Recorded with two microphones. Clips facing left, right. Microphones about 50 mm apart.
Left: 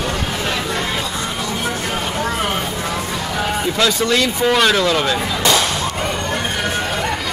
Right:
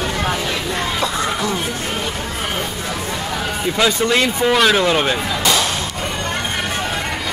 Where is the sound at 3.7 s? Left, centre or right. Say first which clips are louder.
Right 2 dB; centre.